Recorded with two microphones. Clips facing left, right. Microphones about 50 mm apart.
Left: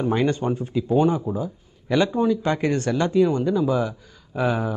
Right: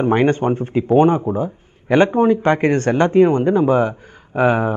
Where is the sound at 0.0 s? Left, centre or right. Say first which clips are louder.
Right 6 dB; right.